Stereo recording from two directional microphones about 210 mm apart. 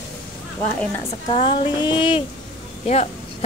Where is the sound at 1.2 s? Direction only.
25° left (ahead or behind).